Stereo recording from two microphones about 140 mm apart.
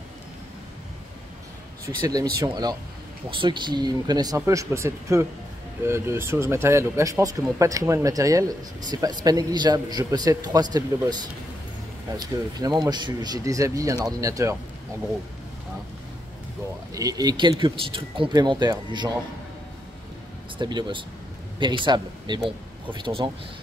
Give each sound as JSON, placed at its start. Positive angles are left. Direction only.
{"t": 2.0, "sound": "speech", "side_deg": -25}
{"t": 12.2, "sound": "speech", "side_deg": -30}
{"t": 16.9, "sound": "speech", "side_deg": -25}
{"t": 20.5, "sound": "speech", "side_deg": -35}